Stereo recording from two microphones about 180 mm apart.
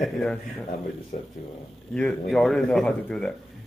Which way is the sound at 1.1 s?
40° left (ahead or behind).